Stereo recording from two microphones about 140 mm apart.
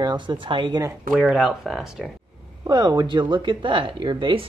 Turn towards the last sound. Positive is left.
turn(degrees=-35)  # may be behind; listen again after turning